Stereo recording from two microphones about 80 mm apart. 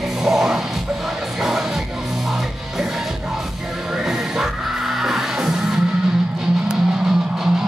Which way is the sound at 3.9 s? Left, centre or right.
Centre.